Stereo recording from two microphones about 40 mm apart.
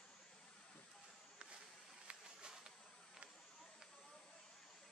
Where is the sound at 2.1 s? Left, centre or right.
Centre.